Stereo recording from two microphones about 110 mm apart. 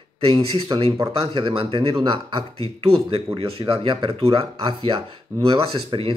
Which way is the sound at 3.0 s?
55° right (ahead or behind).